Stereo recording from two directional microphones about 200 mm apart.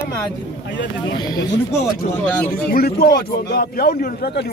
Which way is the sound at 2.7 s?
50° left (ahead or behind).